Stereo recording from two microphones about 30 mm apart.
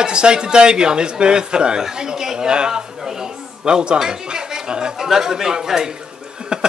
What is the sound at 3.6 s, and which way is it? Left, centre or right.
A man's voice, right.